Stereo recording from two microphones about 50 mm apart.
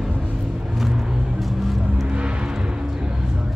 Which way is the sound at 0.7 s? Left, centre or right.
Centre.